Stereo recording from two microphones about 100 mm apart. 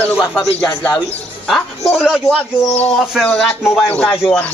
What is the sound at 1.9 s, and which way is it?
Speech, 5° right (ahead or behind).